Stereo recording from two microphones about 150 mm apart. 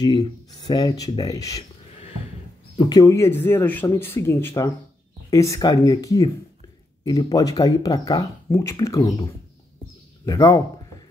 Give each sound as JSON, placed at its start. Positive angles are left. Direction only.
{"t": 0.0, "sound": "speech", "side_deg": 25}
{"t": 2.8, "sound": "speech", "side_deg": 25}
{"t": 10.2, "sound": "speech", "side_deg": 25}